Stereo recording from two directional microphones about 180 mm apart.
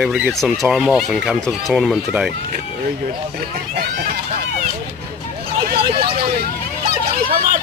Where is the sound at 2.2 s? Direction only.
55° right (ahead or behind).